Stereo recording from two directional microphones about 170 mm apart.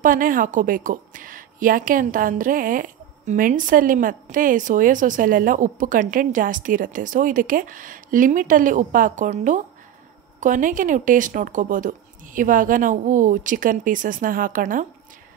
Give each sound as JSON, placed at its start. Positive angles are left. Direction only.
{"t": 0.0, "sound": "a woman's voice", "side_deg": -55}